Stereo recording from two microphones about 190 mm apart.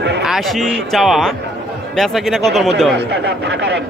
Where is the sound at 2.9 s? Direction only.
65° right (ahead or behind).